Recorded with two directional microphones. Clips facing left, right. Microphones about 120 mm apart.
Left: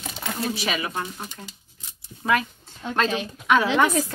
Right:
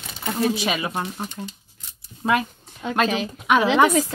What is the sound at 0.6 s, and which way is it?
Speech, 25° right (ahead or behind).